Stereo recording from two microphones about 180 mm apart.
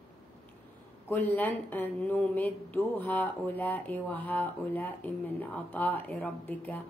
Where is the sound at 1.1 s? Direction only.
10° left (ahead or behind).